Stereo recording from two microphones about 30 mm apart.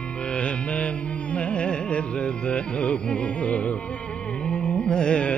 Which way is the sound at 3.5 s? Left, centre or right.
Left.